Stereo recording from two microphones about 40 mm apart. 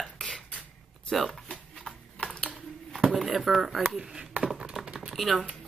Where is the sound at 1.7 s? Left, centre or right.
Centre.